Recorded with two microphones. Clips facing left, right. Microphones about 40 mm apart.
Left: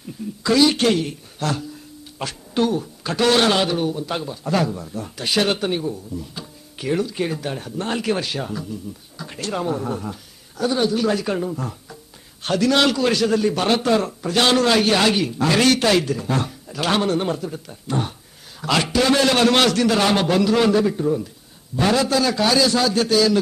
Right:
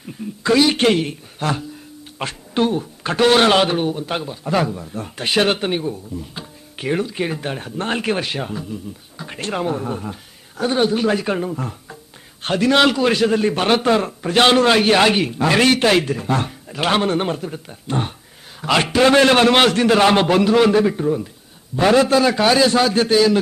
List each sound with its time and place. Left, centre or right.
0.4 s speech: right
4.2 s a man's voice: right
4.9 s a man's voice: right
10.6 s a man's voice: right